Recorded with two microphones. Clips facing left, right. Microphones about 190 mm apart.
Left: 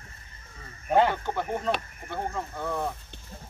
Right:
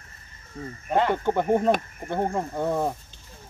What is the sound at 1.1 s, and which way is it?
Speech, 50° right (ahead or behind).